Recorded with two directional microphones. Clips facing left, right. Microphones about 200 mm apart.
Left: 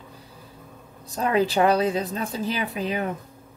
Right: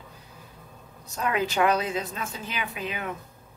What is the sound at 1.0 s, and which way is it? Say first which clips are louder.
A woman's voice: left 5 dB; 35° left (ahead or behind).